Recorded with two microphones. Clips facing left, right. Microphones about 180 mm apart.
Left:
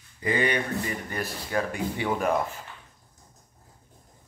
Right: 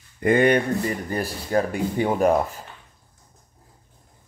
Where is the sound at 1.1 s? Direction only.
35° right (ahead or behind).